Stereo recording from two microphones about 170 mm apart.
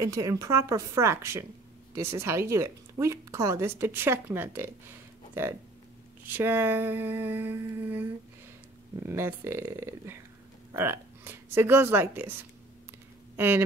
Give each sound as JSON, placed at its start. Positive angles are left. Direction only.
{"t": 0.0, "sound": "a woman's voice", "side_deg": -20}
{"t": 13.4, "sound": "speech", "side_deg": -10}